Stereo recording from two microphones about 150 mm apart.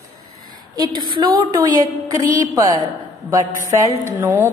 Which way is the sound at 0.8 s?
30° right (ahead or behind).